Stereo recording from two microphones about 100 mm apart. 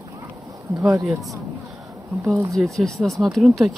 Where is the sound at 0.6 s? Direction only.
30° right (ahead or behind).